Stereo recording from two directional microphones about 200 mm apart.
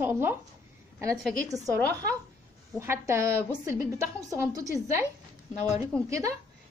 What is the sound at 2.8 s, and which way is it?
A woman's voice, 15° right (ahead or behind).